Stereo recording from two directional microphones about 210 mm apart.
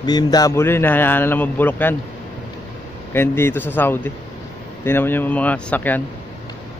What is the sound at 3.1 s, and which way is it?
A man's voice, 10° left (ahead or behind).